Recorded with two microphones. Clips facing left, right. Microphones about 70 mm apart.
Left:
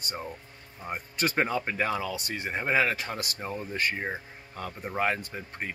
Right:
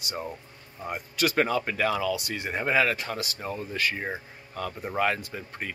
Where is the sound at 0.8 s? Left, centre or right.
Left.